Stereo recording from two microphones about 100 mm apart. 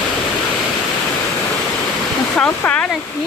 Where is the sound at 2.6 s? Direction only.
10° left (ahead or behind).